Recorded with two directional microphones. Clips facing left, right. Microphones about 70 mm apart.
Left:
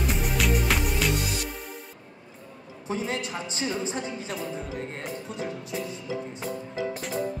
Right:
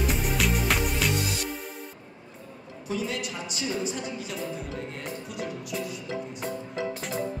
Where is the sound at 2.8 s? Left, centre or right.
Left.